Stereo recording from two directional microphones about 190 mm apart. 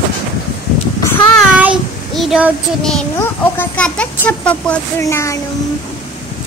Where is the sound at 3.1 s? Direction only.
10° left (ahead or behind).